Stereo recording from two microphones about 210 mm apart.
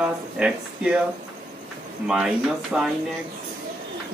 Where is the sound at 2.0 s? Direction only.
5° right (ahead or behind).